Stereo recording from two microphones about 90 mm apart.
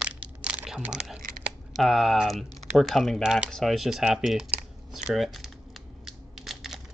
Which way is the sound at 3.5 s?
Centre (ahead or behind).